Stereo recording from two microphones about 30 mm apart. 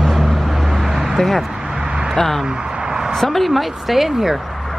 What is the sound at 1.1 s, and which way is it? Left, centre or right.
Speech, centre.